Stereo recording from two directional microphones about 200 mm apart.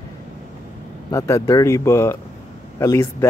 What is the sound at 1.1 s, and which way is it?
Speech, 15° left (ahead or behind).